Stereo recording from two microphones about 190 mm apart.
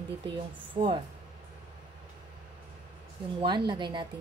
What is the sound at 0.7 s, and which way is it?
Speech, 25° right (ahead or behind).